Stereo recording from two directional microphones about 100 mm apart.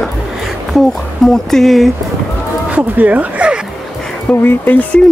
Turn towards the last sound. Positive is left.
turn(degrees=15)  # may be behind; listen again after turning